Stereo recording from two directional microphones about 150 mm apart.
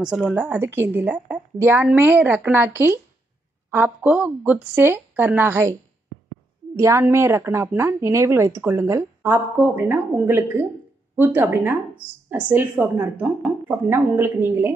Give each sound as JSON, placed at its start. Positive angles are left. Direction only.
{"t": 0.0, "sound": "speech", "side_deg": -5}
{"t": 6.8, "sound": "speech", "side_deg": -20}